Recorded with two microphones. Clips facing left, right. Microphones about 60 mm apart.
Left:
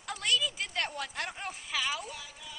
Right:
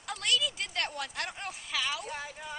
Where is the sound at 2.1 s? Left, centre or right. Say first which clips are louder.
Right 6 dB; right.